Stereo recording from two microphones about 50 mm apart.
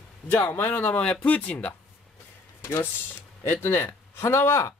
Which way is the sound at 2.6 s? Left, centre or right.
Left.